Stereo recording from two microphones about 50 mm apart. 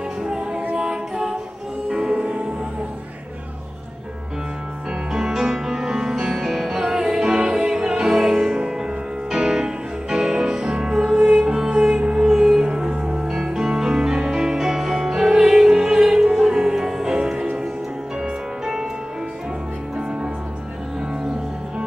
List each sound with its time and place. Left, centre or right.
0.2 s music: centre
0.8 s a capella: centre
1.9 s music: centre
5.1 s music: centre